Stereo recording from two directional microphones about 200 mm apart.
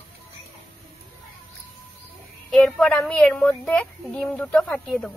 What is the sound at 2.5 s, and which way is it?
A woman's voice, centre (ahead or behind).